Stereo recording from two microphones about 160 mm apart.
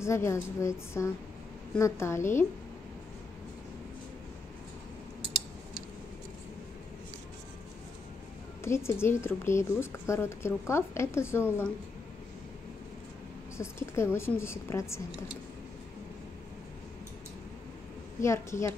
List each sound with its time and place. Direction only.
0.0 s a woman's voice: 15° left (ahead or behind)
8.6 s a woman's voice: 15° left (ahead or behind)
13.6 s a woman's voice: 15° left (ahead or behind)
18.2 s a woman's voice: 15° left (ahead or behind)